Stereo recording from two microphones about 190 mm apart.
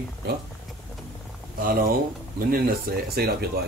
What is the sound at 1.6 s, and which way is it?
Speech, 50° right (ahead or behind).